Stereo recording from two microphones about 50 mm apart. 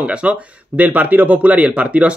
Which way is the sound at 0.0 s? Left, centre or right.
Right.